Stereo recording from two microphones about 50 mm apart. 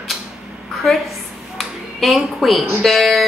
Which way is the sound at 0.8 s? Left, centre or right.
Centre.